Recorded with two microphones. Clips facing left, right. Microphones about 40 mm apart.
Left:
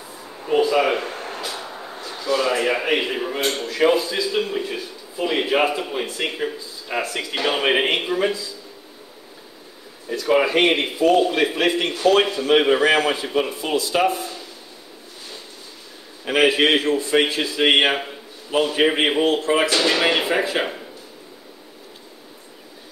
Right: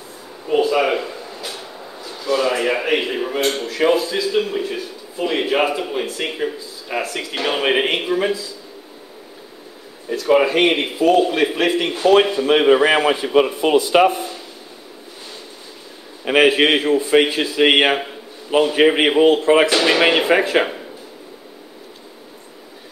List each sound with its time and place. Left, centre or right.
0.5 s a sound: centre
1.0 s a sound: left
1.5 s train: centre
2.1 s speech: centre
10.0 s a man's voice: centre; by 14.3 s right
16.3 s a man's voice: centre
19.4 s speech: right
19.7 s a man's voice: centre